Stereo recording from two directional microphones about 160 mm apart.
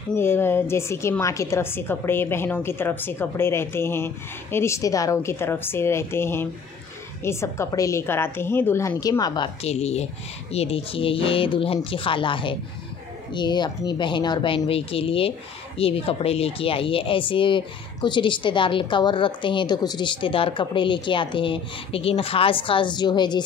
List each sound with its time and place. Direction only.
0.1 s a woman's voice: 15° left (ahead or behind)
9.6 s speech: 40° left (ahead or behind)